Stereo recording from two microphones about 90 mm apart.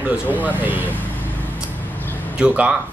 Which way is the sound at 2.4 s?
15° right (ahead or behind).